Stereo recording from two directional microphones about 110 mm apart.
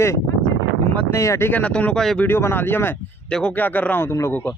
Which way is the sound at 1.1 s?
25° left (ahead or behind).